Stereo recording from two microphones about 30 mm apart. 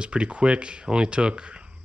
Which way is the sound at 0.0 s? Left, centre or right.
Right.